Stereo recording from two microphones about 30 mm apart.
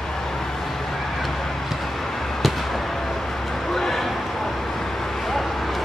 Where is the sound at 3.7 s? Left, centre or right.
Centre.